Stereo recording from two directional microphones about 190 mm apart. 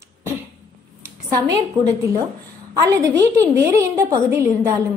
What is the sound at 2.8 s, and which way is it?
A woman's voice, 15° right (ahead or behind).